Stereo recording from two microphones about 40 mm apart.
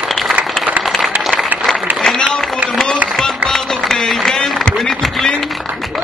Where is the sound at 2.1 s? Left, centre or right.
Centre.